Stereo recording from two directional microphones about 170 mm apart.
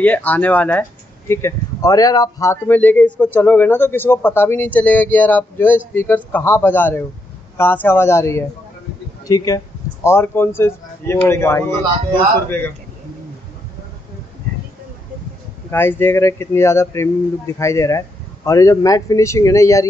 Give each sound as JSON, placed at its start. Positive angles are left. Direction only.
{"t": 0.0, "sound": "speech", "side_deg": 10}
{"t": 15.7, "sound": "speech", "side_deg": 15}